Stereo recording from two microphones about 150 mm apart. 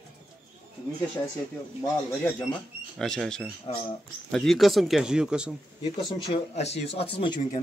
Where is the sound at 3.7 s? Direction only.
45° left (ahead or behind).